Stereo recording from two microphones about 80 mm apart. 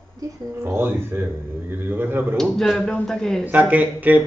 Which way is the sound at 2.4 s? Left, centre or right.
Centre.